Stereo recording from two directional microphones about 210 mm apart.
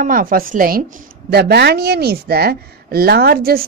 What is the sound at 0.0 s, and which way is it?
A woman's voice, 40° right (ahead or behind).